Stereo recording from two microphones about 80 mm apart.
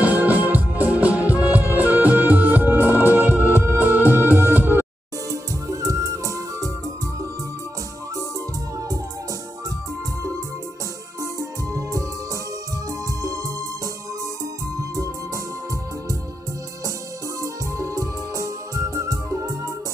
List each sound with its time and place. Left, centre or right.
0.0 s music: right
5.3 s music: right
11.3 s music: right
13.2 s music: right
14.8 s music: right
17.4 s music: right